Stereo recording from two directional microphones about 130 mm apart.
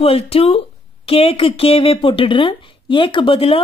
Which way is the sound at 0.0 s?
45° left (ahead or behind).